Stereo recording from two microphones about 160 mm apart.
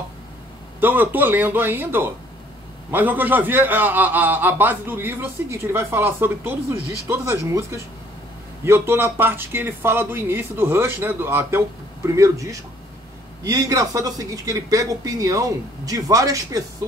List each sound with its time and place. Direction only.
0.7 s a man's voice: 10° right (ahead or behind)